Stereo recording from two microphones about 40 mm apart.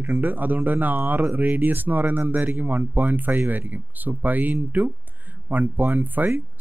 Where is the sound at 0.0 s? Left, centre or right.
Right.